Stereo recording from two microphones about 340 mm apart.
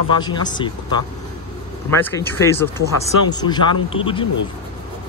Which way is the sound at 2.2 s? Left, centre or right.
Centre.